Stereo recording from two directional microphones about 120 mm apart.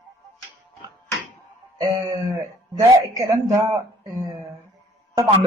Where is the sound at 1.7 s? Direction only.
30° right (ahead or behind).